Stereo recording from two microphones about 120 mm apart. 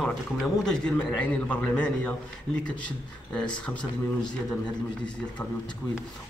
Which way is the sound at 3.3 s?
5° left (ahead or behind).